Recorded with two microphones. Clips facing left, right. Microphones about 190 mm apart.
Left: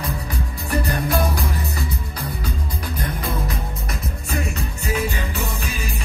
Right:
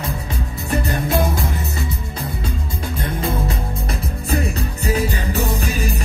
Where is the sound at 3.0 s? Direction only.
25° right (ahead or behind).